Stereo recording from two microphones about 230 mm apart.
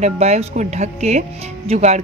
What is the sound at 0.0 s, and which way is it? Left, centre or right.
Speech, right.